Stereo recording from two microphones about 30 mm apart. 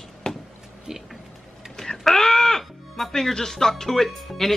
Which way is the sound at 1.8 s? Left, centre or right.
Centre.